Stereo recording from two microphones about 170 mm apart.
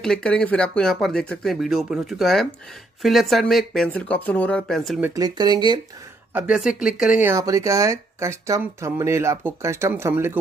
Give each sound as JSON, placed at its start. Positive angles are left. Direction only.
{"t": 0.0, "sound": "speech", "side_deg": 5}
{"t": 5.0, "sound": "speech", "side_deg": -20}
{"t": 6.3, "sound": "speech", "side_deg": -5}